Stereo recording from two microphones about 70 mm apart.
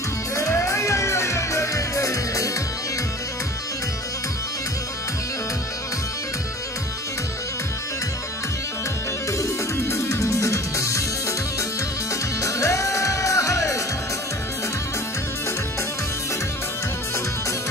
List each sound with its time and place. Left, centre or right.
0.4 s music: left
9.8 s music: left
12.4 s music: left